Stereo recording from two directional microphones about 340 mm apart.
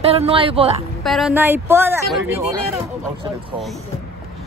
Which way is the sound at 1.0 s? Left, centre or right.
Centre.